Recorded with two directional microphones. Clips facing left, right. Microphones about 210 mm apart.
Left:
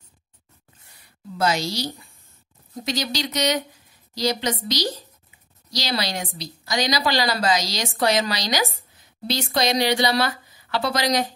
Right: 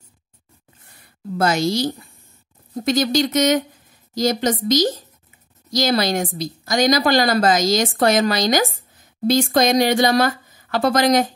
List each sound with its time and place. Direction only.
0.8 s a woman's voice: 50° right (ahead or behind)